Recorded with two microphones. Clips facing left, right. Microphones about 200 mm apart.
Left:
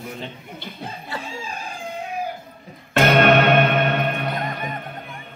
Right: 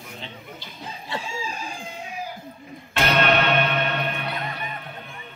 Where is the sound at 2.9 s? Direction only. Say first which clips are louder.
Left 6 dB; 50° left (ahead or behind).